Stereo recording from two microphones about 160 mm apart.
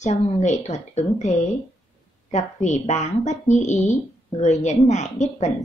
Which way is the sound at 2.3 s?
45° left (ahead or behind).